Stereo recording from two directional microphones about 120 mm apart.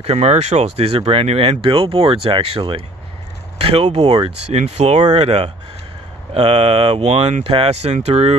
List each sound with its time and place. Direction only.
0.0 s speech: 60° right (ahead or behind)